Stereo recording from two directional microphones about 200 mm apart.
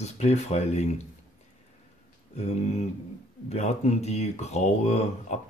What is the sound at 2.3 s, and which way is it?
Speech, 35° left (ahead or behind).